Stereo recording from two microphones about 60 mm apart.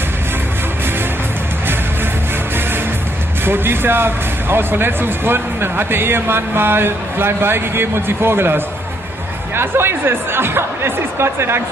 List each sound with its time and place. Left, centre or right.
3.4 s speech: right